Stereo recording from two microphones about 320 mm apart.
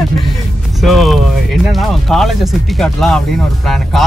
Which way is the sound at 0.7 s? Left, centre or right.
Centre.